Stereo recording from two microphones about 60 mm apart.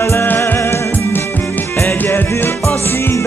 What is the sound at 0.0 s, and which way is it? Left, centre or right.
Music, left.